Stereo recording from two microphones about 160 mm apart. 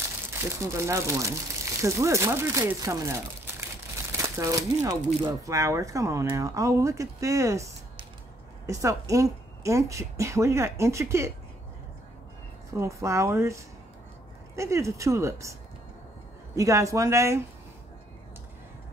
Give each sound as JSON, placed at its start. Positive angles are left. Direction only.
{"t": 0.3, "sound": "speech", "side_deg": -15}
{"t": 12.7, "sound": "speech", "side_deg": -20}
{"t": 16.5, "sound": "speech", "side_deg": -20}